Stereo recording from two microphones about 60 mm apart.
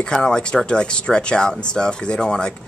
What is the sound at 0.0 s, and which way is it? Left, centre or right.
Speech, centre.